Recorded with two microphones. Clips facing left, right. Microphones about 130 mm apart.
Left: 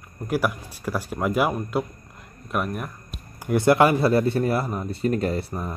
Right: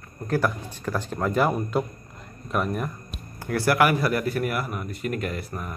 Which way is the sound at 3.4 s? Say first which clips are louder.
Left 4 dB; 20° left (ahead or behind).